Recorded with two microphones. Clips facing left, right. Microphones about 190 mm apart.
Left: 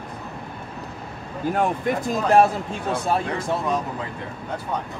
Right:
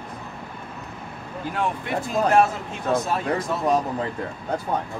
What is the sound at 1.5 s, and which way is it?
Speech, 45° left (ahead or behind).